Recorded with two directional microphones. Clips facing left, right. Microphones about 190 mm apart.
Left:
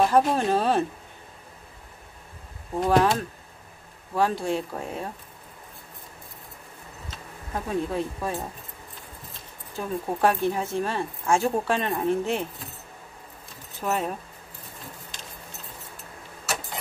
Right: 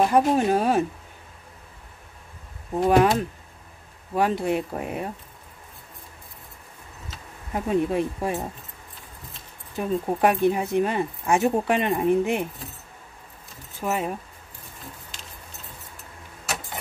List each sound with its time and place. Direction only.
0.0 s speech: 15° right (ahead or behind)
2.8 s speech: 15° right (ahead or behind)
7.5 s speech: 20° right (ahead or behind)
9.8 s speech: 15° right (ahead or behind)
13.8 s speech: 5° right (ahead or behind)